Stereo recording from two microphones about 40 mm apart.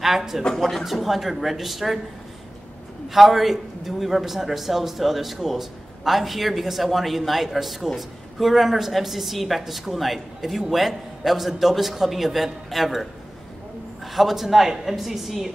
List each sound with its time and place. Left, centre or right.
0.0 s speech: centre
0.4 s speech: centre
0.8 s a man's voice: centre
3.1 s a man's voice: centre
14.1 s a man's voice: centre